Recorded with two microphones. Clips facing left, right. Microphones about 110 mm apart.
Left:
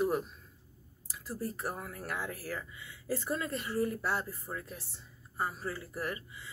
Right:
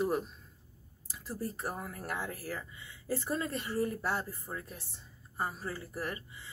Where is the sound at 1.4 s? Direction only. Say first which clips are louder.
Even; 30° right (ahead or behind).